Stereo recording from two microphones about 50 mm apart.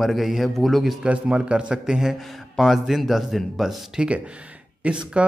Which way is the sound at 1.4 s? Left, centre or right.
Centre.